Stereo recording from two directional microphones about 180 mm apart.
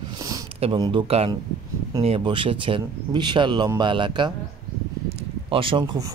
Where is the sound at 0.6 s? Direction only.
25° right (ahead or behind).